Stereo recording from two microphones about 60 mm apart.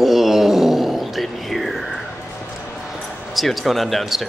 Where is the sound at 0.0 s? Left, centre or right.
Centre.